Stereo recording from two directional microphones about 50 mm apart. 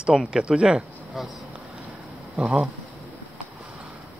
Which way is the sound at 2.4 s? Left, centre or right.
Centre.